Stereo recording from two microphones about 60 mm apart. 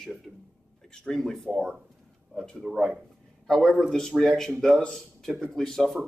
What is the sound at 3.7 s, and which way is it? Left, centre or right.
Speech, centre.